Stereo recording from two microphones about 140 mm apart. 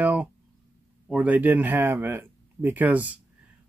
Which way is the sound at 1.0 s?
10° right (ahead or behind).